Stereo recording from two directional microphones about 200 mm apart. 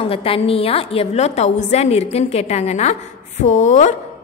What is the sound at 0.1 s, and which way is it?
A woman's voice, 30° left (ahead or behind).